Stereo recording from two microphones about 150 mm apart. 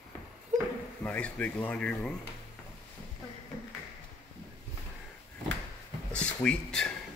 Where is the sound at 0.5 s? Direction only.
55° right (ahead or behind).